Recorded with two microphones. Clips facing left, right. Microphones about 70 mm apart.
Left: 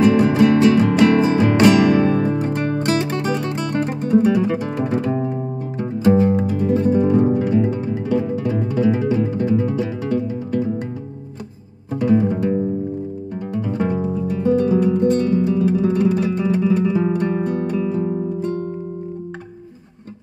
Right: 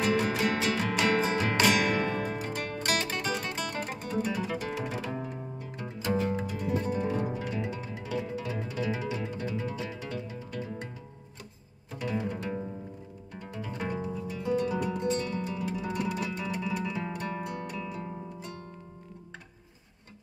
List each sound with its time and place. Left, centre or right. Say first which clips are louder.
0.2 s music: left 14 dB; left
7.0 s music: left 14 dB; left
7.8 s music: left 14 dB; left
12.0 s music: left 16 dB; left
13.7 s music: left 12 dB; left